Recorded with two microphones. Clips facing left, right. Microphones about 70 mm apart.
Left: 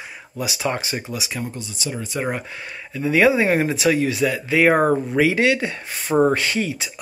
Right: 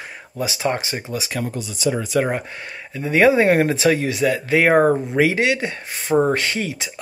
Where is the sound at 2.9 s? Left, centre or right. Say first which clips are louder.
Right 2 dB; right.